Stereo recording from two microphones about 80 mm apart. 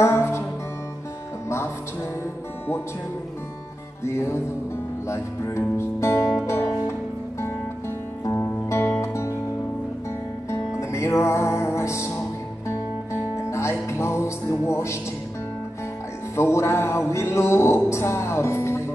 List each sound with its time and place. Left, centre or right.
0.0 s music: left
4.0 s music: left
8.6 s music: left
10.8 s music: left
16.3 s music: left